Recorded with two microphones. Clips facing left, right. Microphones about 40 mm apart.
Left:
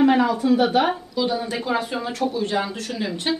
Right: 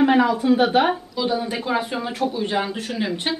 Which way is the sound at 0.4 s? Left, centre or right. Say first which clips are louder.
Right 1 dB; centre.